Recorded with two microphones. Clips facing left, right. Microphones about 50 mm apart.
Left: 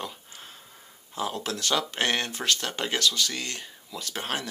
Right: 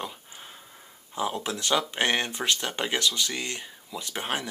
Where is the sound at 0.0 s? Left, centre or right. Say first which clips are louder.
Right 1 dB; centre.